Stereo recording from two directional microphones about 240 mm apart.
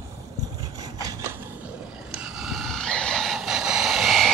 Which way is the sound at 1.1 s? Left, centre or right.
Centre.